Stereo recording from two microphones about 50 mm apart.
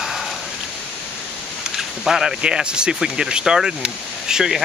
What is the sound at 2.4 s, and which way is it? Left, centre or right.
Speech, centre.